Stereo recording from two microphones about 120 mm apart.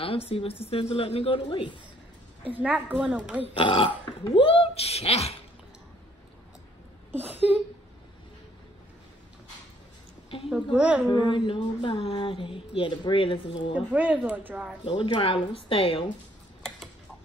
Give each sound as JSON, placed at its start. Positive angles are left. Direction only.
{"t": 0.0, "sound": "speech", "side_deg": 55}
{"t": 2.5, "sound": "a woman's voice", "side_deg": -15}
{"t": 3.5, "sound": "speech", "side_deg": 45}
{"t": 7.1, "sound": "a sound", "side_deg": -15}
{"t": 10.5, "sound": "a woman's voice", "side_deg": -10}
{"t": 11.1, "sound": "speech", "side_deg": 40}
{"t": 13.7, "sound": "a woman's voice", "side_deg": -10}
{"t": 14.9, "sound": "speech", "side_deg": 45}